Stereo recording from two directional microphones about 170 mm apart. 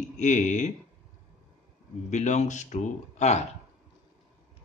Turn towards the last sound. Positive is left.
turn(degrees=40)  # may be behind; listen again after turning